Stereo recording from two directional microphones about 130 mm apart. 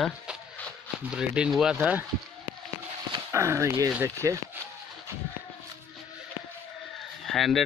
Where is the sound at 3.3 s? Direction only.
20° right (ahead or behind).